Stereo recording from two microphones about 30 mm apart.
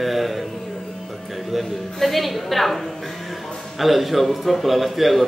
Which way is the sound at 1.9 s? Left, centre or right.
Centre.